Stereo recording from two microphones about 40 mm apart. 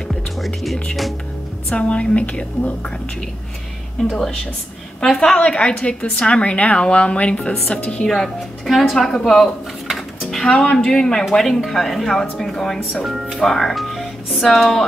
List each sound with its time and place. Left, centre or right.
1.8 s a woman's voice: left
5.1 s a woman's voice: centre; by 8.0 s left
8.0 s speech: centre
8.6 s speech: centre
8.9 s speech: centre
9.8 s dishes: centre
10.4 s a woman's voice: left
13.0 s speech: centre
13.4 s speech: centre